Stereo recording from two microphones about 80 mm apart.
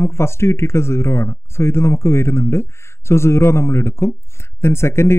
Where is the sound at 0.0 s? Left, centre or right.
Left.